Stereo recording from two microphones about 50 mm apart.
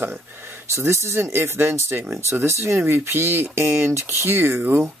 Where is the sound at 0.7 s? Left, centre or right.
Right.